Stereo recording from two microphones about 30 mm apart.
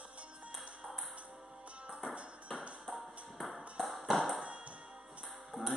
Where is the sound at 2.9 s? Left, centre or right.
Centre.